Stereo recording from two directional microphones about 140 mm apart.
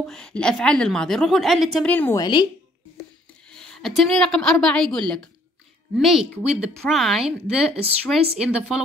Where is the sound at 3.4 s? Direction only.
5° left (ahead or behind).